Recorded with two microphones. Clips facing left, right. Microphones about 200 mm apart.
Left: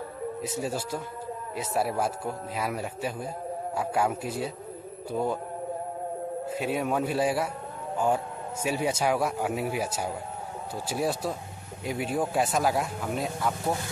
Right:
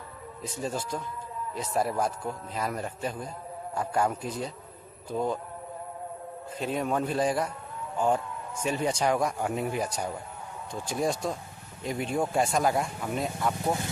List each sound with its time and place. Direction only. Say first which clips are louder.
0.6 s a man's voice: right 2 dB; 10° left (ahead or behind)
6.6 s a man's voice: even; 10° left (ahead or behind)
8.6 s a man's voice: even; 5° left (ahead or behind)